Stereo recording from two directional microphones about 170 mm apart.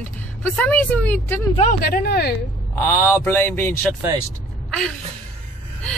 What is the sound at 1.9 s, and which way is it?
Speech, 65° left (ahead or behind).